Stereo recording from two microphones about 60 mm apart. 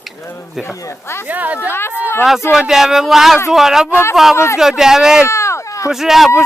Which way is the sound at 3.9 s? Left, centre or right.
Left.